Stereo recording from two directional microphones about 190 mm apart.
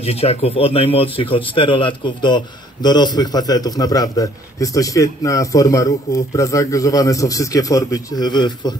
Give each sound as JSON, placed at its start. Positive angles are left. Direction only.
{"t": 0.0, "sound": "speech", "side_deg": 30}